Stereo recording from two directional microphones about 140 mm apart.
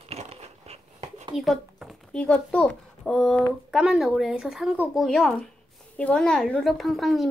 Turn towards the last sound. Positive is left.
turn(degrees=0)  # may be behind; listen again after turning